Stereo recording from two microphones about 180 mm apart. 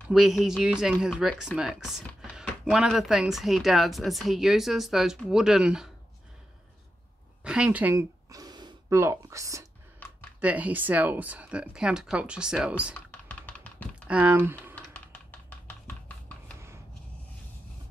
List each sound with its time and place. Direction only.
0.1 s speech: centre (ahead or behind)
7.4 s speech: 5° right (ahead or behind)
13.1 s typing: 10° left (ahead or behind)
14.0 s speech: 5° right (ahead or behind)
15.0 s typing: 10° left (ahead or behind)